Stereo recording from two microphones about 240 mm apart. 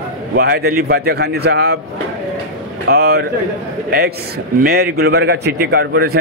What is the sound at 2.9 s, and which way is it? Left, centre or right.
Speech, right.